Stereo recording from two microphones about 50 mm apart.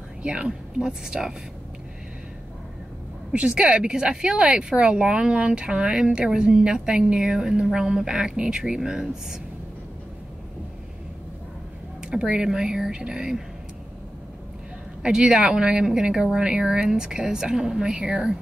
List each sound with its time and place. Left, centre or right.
0.2 s speech: right
3.3 s speech: right
12.0 s speech: centre
15.0 s speech: centre